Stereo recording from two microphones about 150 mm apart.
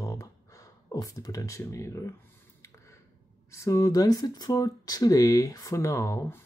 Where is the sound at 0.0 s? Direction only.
20° left (ahead or behind).